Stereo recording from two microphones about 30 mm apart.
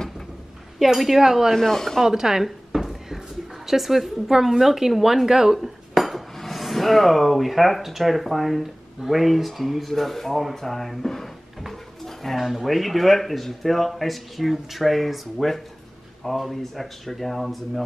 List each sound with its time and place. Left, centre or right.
0.7 s speech: centre
1.2 s a woman's voice: centre
1.5 s speech: centre
2.0 s a sound: centre
3.6 s a woman's voice: centre
5.9 s dishes: centre
8.0 s speech: centre
9.9 s speech: centre
12.0 s dishes: centre
12.4 s a woman's voice: centre
12.6 s speech: centre